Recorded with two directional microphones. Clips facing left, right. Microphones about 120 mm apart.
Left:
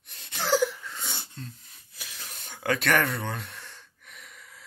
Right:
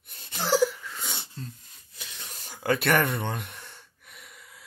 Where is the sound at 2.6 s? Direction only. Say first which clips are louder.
Right 1 dB; 15° right (ahead or behind).